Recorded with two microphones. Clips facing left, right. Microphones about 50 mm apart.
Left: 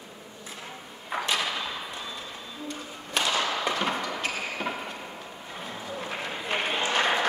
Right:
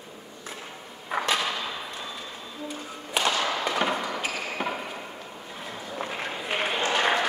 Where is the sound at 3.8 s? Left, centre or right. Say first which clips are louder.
Right 1 dB; centre.